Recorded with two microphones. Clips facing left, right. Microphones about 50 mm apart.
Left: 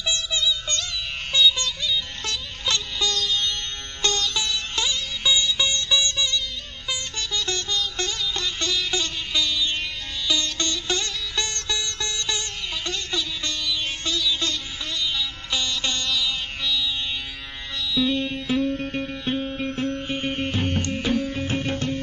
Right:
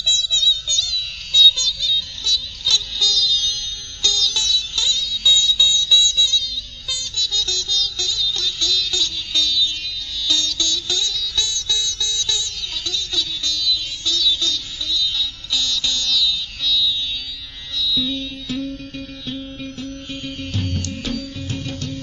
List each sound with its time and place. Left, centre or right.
0.0 s music: left
10.5 s music: left